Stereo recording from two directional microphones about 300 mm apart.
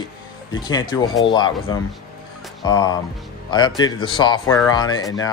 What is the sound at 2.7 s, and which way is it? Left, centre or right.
Speech, centre.